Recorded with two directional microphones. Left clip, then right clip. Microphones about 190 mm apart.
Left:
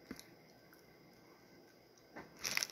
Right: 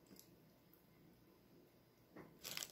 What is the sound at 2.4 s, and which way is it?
Biting, 15° left (ahead or behind).